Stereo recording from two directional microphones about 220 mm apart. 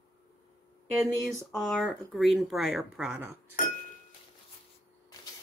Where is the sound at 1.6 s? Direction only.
Centre (ahead or behind).